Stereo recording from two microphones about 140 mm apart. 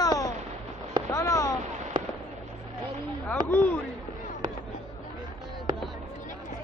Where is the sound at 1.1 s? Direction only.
25° left (ahead or behind).